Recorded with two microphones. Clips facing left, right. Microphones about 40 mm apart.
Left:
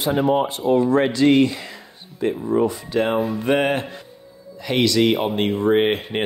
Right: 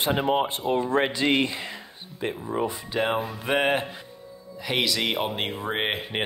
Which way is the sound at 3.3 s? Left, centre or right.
Centre.